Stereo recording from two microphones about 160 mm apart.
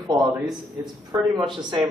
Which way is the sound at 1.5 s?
30° right (ahead or behind).